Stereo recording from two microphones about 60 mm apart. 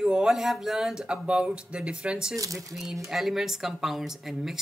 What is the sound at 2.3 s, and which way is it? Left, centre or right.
Speech, right.